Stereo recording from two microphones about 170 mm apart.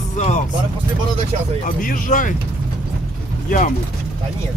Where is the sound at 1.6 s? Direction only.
55° left (ahead or behind).